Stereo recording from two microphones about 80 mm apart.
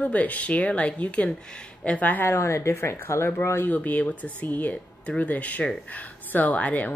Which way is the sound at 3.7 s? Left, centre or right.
Centre.